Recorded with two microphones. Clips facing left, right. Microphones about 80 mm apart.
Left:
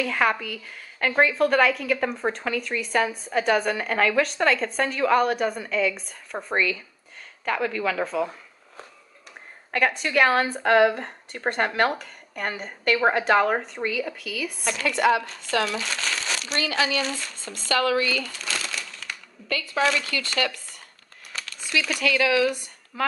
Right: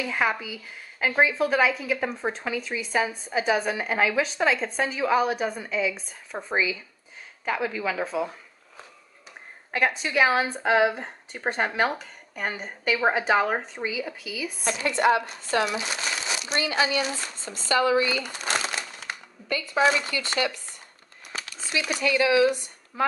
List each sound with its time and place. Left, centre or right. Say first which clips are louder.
0.0 s a woman's voice: left 3 dB; centre
14.7 s speech: even; right
18.3 s crumpling: right 3 dB; right
19.4 s a woman's voice: right 1 dB; centre
21.3 s a sound: left 1 dB; right
22.0 s speech: right 2 dB; right